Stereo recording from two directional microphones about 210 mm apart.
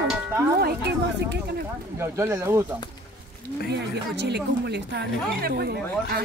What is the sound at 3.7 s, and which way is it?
Speech, 55° right (ahead or behind).